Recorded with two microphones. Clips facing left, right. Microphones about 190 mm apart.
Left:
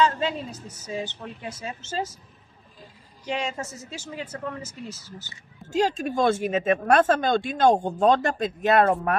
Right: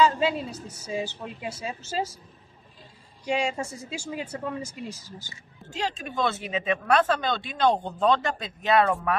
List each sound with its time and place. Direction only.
0.0 s a woman's voice: 10° right (ahead or behind)
3.3 s a woman's voice: 10° right (ahead or behind)
5.7 s speech: 45° left (ahead or behind)